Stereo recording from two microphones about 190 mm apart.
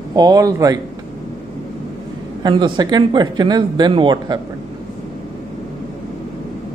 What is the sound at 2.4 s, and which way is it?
Speech, 25° right (ahead or behind).